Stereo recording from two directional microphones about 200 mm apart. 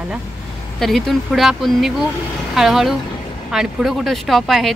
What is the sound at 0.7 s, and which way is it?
Speech, centre (ahead or behind).